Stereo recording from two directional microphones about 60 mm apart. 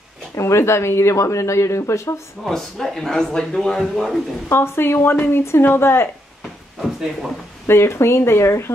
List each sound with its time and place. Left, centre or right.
0.4 s speech: left
2.4 s speech: centre
4.5 s speech: left
6.8 s speech: centre
7.6 s speech: left